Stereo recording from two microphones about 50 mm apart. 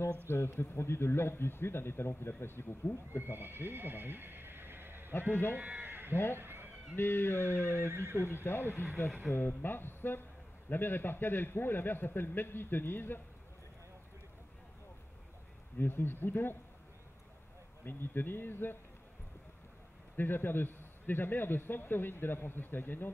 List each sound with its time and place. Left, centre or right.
0.3 s a man's voice: left
3.3 s a sound: right
5.3 s a man's voice: left
5.6 s sheep: right
6.3 s cat: right
7.0 s a man's voice: left
7.8 s speech: right
8.5 s a man's voice: left
15.8 s a man's voice: left
17.8 s a man's voice: left
20.2 s a man's voice: left